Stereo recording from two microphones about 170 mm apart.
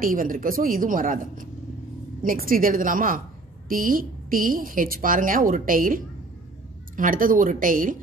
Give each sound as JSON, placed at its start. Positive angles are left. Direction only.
{"t": 0.0, "sound": "a woman's voice", "side_deg": -55}